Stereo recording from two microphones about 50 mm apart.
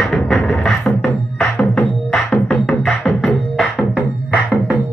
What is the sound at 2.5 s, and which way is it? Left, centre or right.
Music, left.